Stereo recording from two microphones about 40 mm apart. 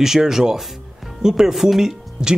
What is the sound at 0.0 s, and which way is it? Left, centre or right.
Speech, centre.